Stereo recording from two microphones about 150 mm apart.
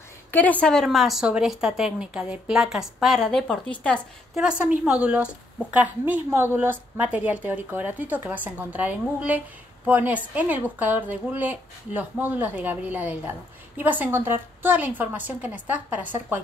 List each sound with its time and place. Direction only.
0.3 s speech: 10° left (ahead or behind)
4.4 s a woman's voice: 5° right (ahead or behind)